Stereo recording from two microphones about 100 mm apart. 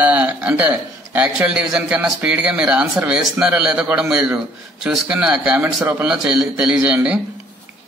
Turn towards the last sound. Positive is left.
turn(degrees=-10)  # may be behind; listen again after turning